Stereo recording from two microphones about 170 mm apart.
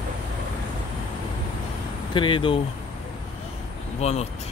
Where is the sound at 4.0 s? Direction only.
40° left (ahead or behind).